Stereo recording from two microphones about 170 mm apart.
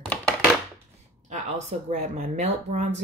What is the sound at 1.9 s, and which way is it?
Speech, 55° right (ahead or behind).